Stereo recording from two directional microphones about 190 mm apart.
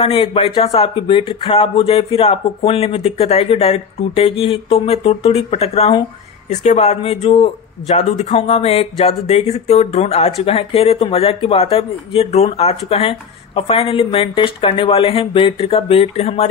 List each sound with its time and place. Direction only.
0.0 s speech: 30° left (ahead or behind)